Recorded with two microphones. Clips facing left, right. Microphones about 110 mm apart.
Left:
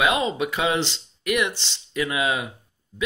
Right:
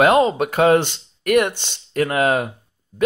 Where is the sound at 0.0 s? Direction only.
45° right (ahead or behind).